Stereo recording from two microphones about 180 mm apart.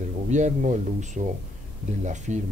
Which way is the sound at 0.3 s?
45° right (ahead or behind).